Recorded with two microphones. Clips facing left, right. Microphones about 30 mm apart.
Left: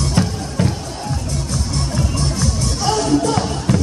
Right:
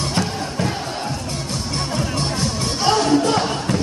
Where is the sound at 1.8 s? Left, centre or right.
Right.